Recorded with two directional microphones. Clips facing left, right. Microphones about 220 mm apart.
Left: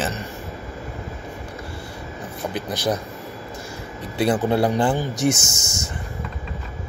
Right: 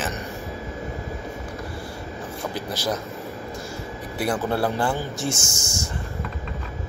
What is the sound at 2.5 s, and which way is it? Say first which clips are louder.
Speech: left 4 dB; 20° left (ahead or behind).